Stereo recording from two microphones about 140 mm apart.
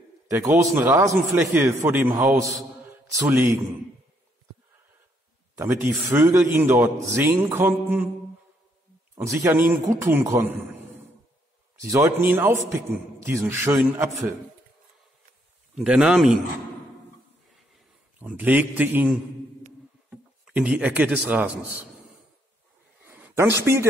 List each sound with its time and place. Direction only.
0.3 s speech: 20° right (ahead or behind)
2.8 s mantra: 15° right (ahead or behind)
3.3 s speech: 15° right (ahead or behind)
5.6 s speech: 20° right (ahead or behind)
9.1 s speech: 20° right (ahead or behind)
11.8 s speech: 20° right (ahead or behind)
15.7 s speech: 5° right (ahead or behind)
18.2 s speech: 10° right (ahead or behind)
20.4 s speech: 10° right (ahead or behind)
23.0 s a sound: 10° right (ahead or behind)
23.6 s speech: 20° right (ahead or behind)